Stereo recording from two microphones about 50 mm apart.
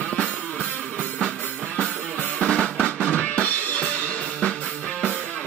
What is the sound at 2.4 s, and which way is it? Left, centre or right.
Drum kit, centre.